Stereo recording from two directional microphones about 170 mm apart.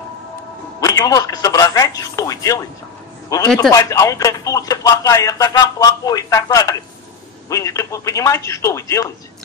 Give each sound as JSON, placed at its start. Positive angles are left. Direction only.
{"t": 0.7, "sound": "a man's voice", "side_deg": 20}